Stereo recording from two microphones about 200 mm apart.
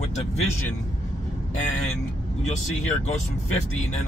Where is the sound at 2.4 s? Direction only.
35° left (ahead or behind).